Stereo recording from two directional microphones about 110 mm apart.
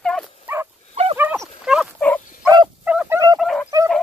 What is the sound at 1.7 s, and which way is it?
Dog, 10° right (ahead or behind).